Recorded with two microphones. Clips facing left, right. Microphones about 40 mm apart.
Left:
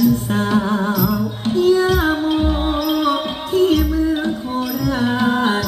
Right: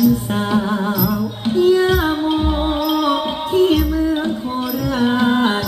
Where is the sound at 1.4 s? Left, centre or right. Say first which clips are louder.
Right 1 dB; centre.